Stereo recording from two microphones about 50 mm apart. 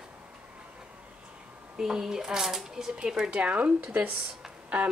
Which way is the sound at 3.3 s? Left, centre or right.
Right.